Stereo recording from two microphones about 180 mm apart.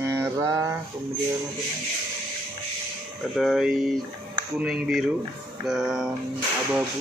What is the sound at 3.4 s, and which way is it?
Speech, centre (ahead or behind).